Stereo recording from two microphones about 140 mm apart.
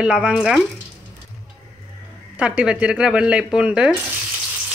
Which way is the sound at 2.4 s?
10° right (ahead or behind).